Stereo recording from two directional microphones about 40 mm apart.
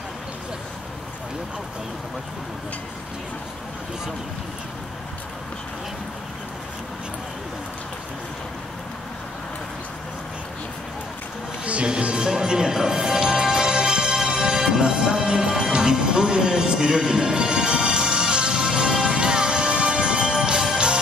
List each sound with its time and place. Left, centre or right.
11.6 s music: right